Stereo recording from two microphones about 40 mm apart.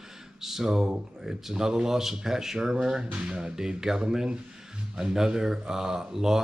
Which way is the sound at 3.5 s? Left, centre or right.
Centre.